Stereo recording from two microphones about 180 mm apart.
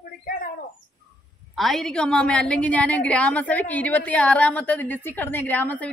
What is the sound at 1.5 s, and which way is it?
A woman's voice, centre (ahead or behind).